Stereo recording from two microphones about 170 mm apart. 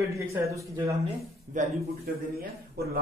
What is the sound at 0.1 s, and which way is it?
Speech, 15° right (ahead or behind).